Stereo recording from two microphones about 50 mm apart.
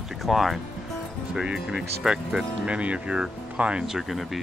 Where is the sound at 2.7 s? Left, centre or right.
Right.